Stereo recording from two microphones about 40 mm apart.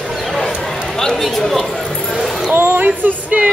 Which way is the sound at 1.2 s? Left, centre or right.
Centre.